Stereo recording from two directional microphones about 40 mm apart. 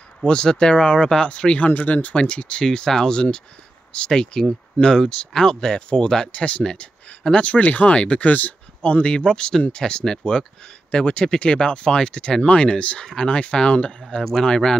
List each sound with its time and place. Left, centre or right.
0.2 s speech: left
1.7 s speech: left
2.1 s speech: left
2.6 s speech: centre
6.3 s speech: left
13.0 s speech: centre
14.2 s speech: centre